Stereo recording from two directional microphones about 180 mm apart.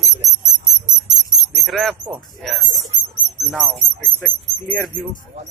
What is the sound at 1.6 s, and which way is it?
Speech, centre (ahead or behind).